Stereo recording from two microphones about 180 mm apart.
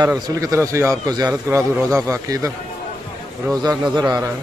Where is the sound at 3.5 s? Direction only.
20° right (ahead or behind).